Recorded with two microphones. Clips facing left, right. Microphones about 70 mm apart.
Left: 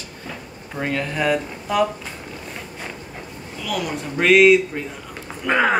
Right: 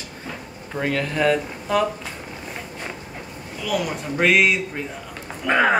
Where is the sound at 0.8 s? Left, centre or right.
Centre.